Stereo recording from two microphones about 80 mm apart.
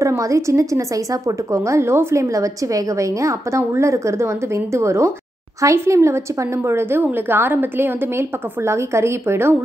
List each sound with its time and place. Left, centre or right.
0.0 s a woman's voice: right